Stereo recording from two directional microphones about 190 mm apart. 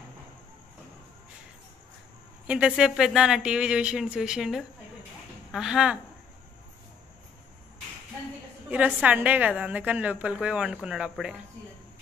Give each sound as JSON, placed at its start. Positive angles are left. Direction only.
{"t": 2.4, "sound": "speech", "side_deg": -5}
{"t": 8.6, "sound": "a woman's voice", "side_deg": -10}